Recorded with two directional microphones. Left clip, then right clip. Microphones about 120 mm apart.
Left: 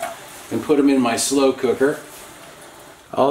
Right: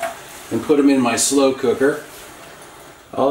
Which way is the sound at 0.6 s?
15° left (ahead or behind).